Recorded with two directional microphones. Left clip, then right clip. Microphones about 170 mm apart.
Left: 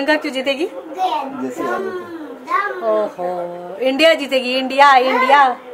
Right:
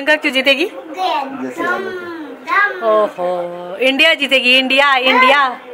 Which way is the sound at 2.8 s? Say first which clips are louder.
Right 4 dB; 10° right (ahead or behind).